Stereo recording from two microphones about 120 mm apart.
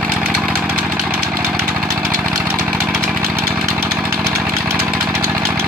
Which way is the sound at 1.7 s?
10° right (ahead or behind).